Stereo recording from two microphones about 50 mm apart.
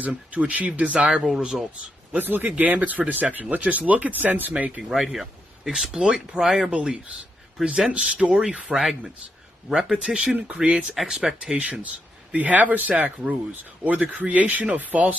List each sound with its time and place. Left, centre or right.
0.0 s speech: right
1.1 s speech: centre
2.1 s speech: right
4.8 s speech: centre
8.7 s speech: centre
10.3 s speech: right
11.1 s speech: centre
11.5 s speech: right